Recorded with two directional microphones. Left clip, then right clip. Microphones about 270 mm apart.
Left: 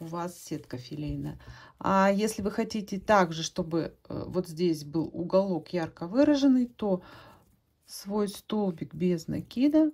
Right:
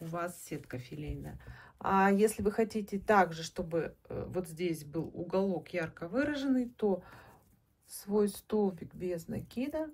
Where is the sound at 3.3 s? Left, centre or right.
Left.